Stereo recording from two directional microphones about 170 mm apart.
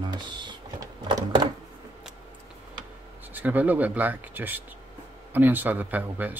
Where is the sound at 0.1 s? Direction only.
25° right (ahead or behind).